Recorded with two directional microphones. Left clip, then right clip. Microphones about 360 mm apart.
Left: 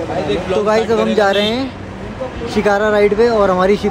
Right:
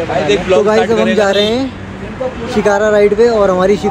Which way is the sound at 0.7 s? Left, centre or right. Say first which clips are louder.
Right 3 dB; centre.